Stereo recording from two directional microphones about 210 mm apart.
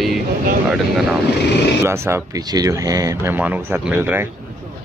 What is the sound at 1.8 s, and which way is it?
Speech, 10° right (ahead or behind).